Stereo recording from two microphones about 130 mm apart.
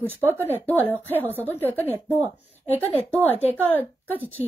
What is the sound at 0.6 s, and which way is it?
A woman's voice, 15° left (ahead or behind).